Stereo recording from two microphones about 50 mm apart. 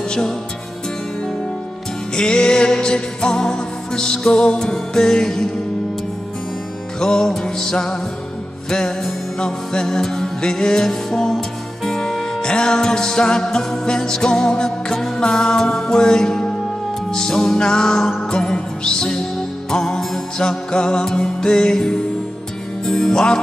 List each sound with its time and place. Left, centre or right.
2.1 s music: centre
7.0 s music: centre
11.1 s music: centre